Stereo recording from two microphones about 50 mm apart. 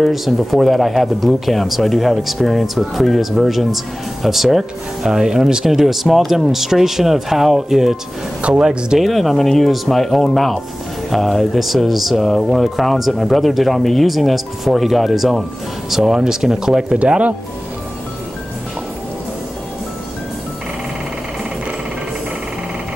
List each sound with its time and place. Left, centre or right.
0.0 s speech: centre
9.0 s speech: centre
17.0 s speech: right